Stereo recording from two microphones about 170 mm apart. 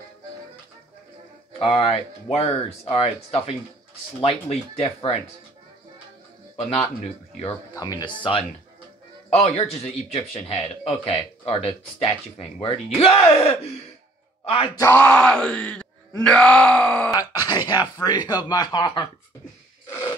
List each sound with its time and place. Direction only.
1.6 s a man's voice: 35° left (ahead or behind)
6.5 s speech: 35° left (ahead or behind)
7.7 s a man's voice: 20° left (ahead or behind)
14.8 s speech: 10° left (ahead or behind)
17.1 s speech: 20° left (ahead or behind)